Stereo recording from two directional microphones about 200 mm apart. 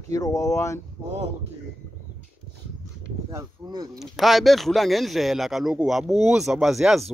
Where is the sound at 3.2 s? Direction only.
20° right (ahead or behind).